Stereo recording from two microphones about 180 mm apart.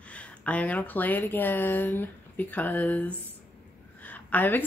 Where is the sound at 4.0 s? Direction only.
10° left (ahead or behind).